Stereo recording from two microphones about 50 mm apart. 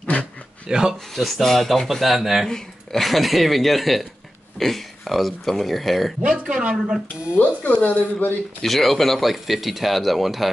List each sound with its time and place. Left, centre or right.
0.0 s a sound: left
0.7 s speech: centre
1.1 s speech: centre
2.4 s speech: centre
6.4 s speech: centre
7.3 s speech: left
8.6 s speech: centre